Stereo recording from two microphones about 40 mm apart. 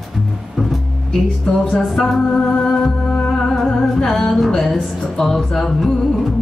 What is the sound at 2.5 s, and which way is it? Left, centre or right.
Music, centre.